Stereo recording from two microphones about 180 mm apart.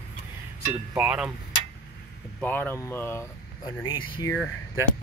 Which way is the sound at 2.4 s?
10° left (ahead or behind).